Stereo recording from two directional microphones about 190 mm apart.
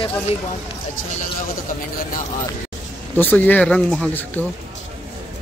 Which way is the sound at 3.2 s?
10° left (ahead or behind).